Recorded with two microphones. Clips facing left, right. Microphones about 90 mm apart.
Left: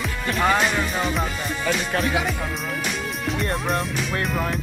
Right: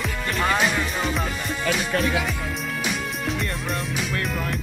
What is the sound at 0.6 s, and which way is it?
Music, centre (ahead or behind).